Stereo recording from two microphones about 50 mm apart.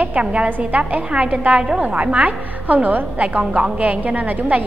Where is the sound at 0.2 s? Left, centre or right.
Right.